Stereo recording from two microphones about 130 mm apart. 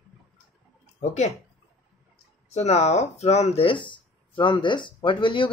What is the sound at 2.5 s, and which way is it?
Speech, 60° left (ahead or behind).